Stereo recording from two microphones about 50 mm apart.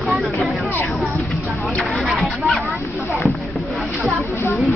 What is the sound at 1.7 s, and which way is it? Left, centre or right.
Speech, centre.